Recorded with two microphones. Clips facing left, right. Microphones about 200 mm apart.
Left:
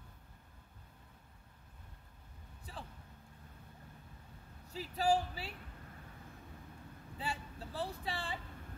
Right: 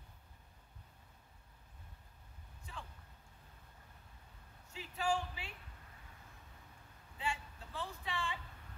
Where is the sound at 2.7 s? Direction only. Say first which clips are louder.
Left 2 dB; 35° left (ahead or behind).